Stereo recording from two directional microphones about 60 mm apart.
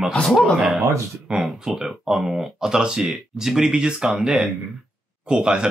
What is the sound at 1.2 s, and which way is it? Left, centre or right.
Speech, centre.